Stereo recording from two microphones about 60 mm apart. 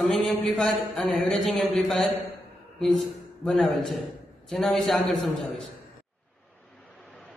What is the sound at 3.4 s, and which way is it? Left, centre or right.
Speech, centre.